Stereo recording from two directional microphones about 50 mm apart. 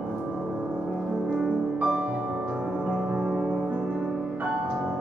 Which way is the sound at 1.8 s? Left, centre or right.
Centre.